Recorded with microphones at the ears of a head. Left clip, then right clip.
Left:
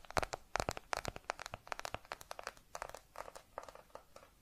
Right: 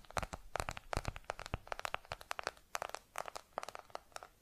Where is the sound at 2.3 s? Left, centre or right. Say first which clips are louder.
Right 6 dB; right.